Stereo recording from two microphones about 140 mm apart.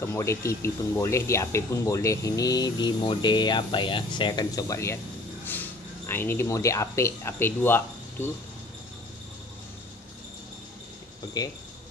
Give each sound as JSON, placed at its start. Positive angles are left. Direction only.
{"t": 0.0, "sound": "speech", "side_deg": 20}
{"t": 11.4, "sound": "speech", "side_deg": 30}